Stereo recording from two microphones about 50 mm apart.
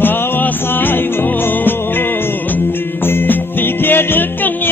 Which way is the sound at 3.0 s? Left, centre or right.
Left.